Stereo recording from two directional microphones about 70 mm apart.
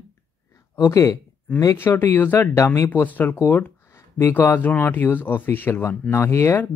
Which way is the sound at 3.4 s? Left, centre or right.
Left.